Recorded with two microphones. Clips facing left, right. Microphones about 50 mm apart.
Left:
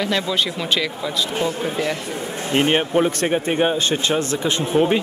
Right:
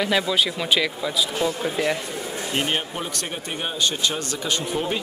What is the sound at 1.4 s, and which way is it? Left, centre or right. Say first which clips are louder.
Speech: left 1 dB; left.